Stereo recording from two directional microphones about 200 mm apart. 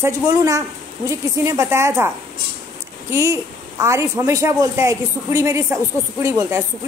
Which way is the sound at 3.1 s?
15° right (ahead or behind).